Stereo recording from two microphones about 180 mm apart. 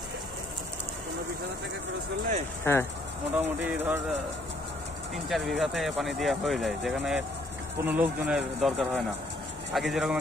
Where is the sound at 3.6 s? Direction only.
10° right (ahead or behind).